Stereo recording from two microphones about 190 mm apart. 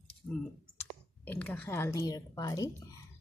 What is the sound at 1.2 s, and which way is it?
A woman's voice, 10° left (ahead or behind).